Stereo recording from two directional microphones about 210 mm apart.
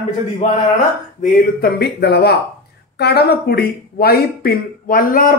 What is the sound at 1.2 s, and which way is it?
Speech, 45° left (ahead or behind).